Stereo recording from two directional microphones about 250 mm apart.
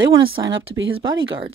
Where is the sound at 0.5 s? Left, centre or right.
Right.